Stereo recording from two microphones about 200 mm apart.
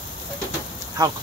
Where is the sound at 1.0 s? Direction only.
20° right (ahead or behind).